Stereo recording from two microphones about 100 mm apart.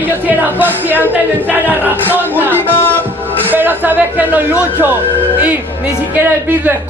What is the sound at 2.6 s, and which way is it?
Speech, 20° left (ahead or behind).